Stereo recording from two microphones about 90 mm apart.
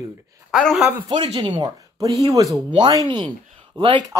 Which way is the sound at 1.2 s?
70° right (ahead or behind).